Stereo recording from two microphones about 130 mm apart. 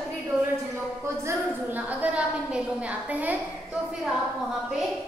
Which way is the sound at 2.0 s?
10° right (ahead or behind).